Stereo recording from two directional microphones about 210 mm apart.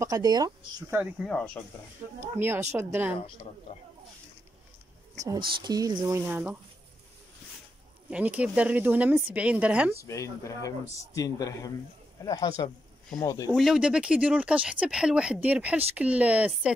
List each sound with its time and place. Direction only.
0.0 s speech: 15° right (ahead or behind)
0.9 s speech: centre (ahead or behind)
2.3 s speech: 10° right (ahead or behind)
3.7 s speech: 30° left (ahead or behind)
5.6 s speech: 20° right (ahead or behind)
8.1 s speech: 5° right (ahead or behind)
9.9 s speech: 15° left (ahead or behind)
13.5 s speech: centre (ahead or behind)